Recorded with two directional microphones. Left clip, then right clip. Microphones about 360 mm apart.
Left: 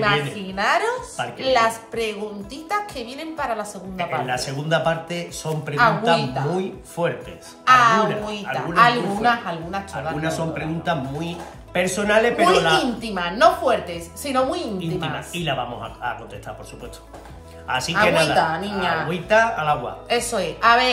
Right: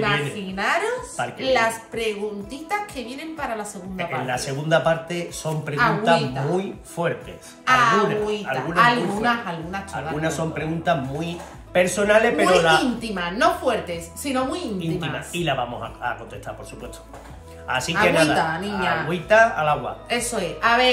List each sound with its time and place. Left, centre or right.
0.1 s a woman's voice: centre
14.8 s a woman's voice: centre
17.6 s a woman's voice: centre